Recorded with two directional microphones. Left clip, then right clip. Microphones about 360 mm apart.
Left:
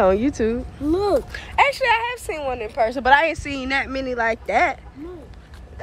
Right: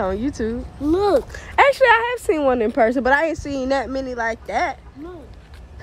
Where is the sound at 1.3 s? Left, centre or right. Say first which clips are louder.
Right 3 dB; right.